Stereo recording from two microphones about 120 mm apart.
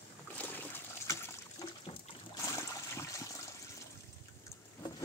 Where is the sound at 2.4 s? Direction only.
25° left (ahead or behind).